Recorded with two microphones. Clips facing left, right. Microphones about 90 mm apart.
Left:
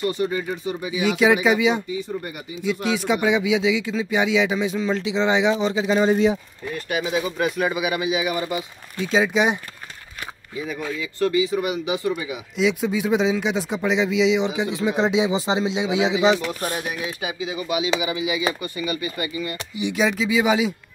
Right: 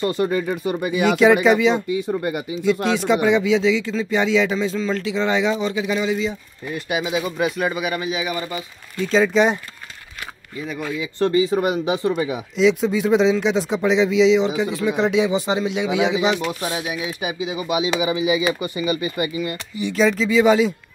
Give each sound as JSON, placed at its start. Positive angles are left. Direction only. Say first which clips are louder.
{"t": 0.0, "sound": "speech", "louder": "right 2 dB", "side_deg": -40}
{"t": 0.3, "sound": "speech", "louder": "right 4 dB", "side_deg": -55}
{"t": 1.0, "sound": "speech", "louder": "right 3 dB", "side_deg": 0}
{"t": 1.9, "sound": "speech", "louder": "right 6 dB", "side_deg": -65}
{"t": 2.9, "sound": "speech", "louder": "right 1 dB", "side_deg": 5}
{"t": 6.0, "sound": "speech", "louder": "left 4 dB", "side_deg": 55}
{"t": 6.7, "sound": "speech", "louder": "right 1 dB", "side_deg": -10}
{"t": 11.0, "sound": "speech", "louder": "right 3 dB", "side_deg": -30}
{"t": 12.5, "sound": "speech", "louder": "right 4 dB", "side_deg": 5}
{"t": 14.5, "sound": "speech", "louder": "right 2 dB", "side_deg": 20}
{"t": 17.0, "sound": "speech", "louder": "right 2 dB", "side_deg": -20}
{"t": 19.7, "sound": "speech", "louder": "right 3 dB", "side_deg": 15}